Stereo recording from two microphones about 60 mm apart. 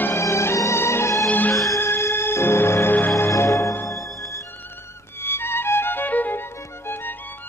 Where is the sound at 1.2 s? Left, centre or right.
Left.